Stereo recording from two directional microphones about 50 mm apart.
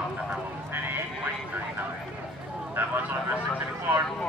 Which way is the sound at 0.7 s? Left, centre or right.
Right.